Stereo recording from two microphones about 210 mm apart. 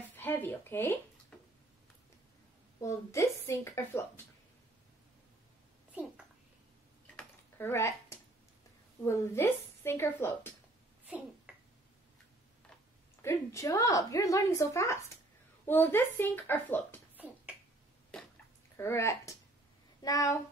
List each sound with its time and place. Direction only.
0.1 s speech: 10° left (ahead or behind)
1.3 s a sound: 5° left (ahead or behind)
2.8 s a woman's voice: 15° left (ahead or behind)
5.9 s a sound: 5° right (ahead or behind)
7.2 s a sound: 10° left (ahead or behind)
9.0 s a woman's voice: 15° left (ahead or behind)
11.1 s finger snapping: 5° right (ahead or behind)
13.2 s a woman's voice: 15° left (ahead or behind)
18.8 s a woman's voice: 10° left (ahead or behind)